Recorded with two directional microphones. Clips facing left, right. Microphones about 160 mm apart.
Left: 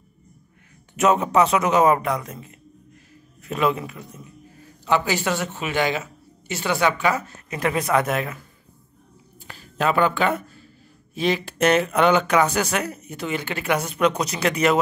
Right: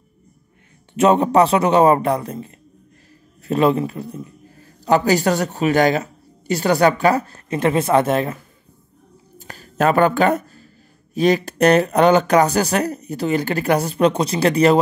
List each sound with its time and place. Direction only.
0.9 s speech: 30° right (ahead or behind)
9.4 s a sound: 40° right (ahead or behind)
11.1 s speech: 45° right (ahead or behind)